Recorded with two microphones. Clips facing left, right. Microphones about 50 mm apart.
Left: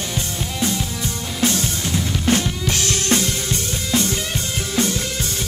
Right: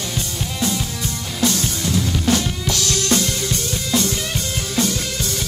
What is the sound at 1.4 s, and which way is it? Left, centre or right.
Drum kit, left.